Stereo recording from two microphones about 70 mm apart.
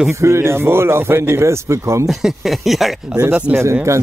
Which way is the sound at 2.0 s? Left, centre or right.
Centre.